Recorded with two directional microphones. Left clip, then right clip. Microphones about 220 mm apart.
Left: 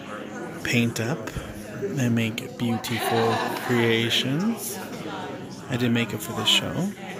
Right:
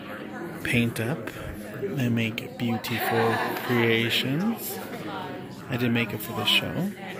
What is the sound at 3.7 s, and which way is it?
Speech, centre (ahead or behind).